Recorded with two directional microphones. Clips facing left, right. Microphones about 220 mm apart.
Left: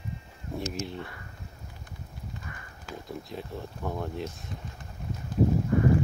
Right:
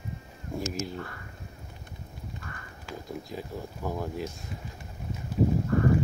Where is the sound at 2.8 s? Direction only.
Centre (ahead or behind).